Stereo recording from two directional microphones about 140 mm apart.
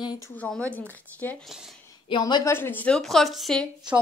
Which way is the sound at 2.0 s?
35° left (ahead or behind).